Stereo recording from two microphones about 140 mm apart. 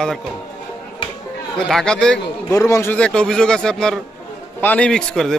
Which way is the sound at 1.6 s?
5° left (ahead or behind).